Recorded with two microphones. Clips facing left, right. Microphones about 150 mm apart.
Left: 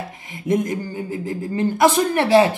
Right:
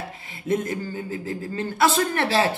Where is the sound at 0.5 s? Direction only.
15° left (ahead or behind).